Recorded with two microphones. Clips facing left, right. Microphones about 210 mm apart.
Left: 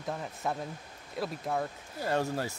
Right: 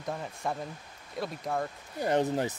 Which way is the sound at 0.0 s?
Centre (ahead or behind).